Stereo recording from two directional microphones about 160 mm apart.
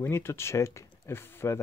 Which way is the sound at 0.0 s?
15° left (ahead or behind).